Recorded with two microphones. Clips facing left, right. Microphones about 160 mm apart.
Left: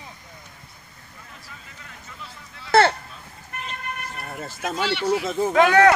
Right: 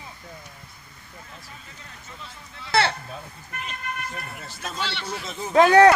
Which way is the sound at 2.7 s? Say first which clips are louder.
Left 6 dB; 45° left (ahead or behind).